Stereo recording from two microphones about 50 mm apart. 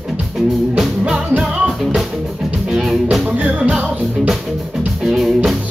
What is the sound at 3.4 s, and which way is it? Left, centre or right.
Music, right.